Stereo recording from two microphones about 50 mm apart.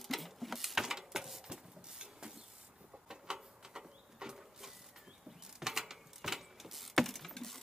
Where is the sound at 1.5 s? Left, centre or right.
Centre.